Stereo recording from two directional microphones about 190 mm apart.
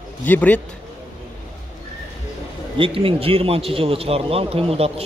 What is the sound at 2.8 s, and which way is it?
A man's voice, 30° right (ahead or behind).